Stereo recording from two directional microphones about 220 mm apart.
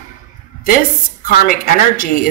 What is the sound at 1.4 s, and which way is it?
Speech, 40° left (ahead or behind).